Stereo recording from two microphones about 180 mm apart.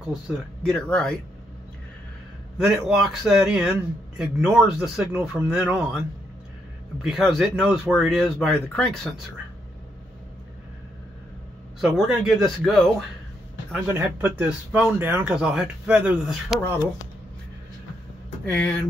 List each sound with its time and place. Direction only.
0.3 s speech: centre (ahead or behind)
2.5 s speech: centre (ahead or behind)
7.0 s speech: centre (ahead or behind)
11.8 s speech: centre (ahead or behind)
13.7 s speech: 10° right (ahead or behind)